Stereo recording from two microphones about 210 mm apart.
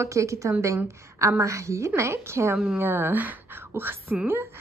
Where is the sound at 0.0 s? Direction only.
15° right (ahead or behind).